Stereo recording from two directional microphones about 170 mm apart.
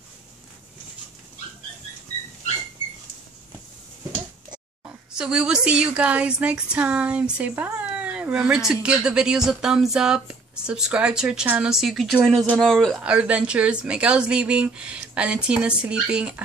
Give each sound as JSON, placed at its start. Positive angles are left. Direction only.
{"t": 5.1, "sound": "a woman's voice", "side_deg": -5}